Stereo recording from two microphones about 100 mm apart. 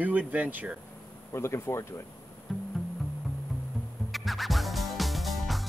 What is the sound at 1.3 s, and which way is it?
Speech, 25° left (ahead or behind).